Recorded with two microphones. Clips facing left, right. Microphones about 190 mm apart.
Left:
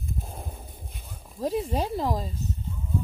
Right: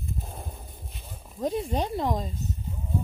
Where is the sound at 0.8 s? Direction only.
Centre (ahead or behind).